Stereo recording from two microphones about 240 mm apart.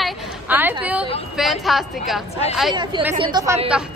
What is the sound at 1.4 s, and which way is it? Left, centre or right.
Speech, centre.